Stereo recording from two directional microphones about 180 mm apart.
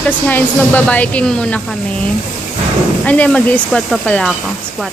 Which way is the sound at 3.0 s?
5° left (ahead or behind).